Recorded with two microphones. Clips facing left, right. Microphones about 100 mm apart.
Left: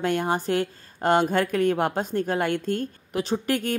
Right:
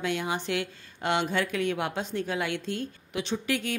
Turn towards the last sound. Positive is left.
turn(degrees=45)  # may be behind; listen again after turning